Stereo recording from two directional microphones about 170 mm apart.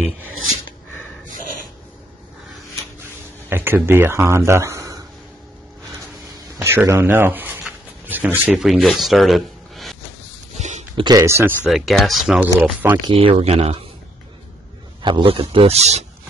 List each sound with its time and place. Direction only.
3.4 s speech: 10° right (ahead or behind)
6.6 s a sound: 15° right (ahead or behind); by 9.9 s centre (ahead or behind)
11.0 s speech: 20° right (ahead or behind)
11.6 s speech: centre (ahead or behind)
13.0 s a man's voice: 35° right (ahead or behind)
15.0 s a man's voice: 25° right (ahead or behind)